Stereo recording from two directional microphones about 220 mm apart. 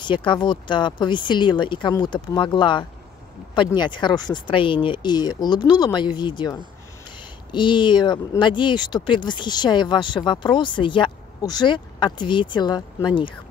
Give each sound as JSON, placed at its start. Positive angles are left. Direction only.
{"t": 0.0, "sound": "speech", "side_deg": 20}